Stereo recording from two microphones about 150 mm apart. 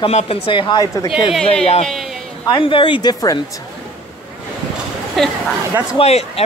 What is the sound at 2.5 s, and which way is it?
Speech, 35° left (ahead or behind).